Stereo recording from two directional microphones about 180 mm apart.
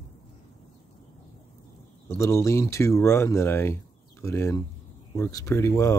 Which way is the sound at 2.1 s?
15° left (ahead or behind).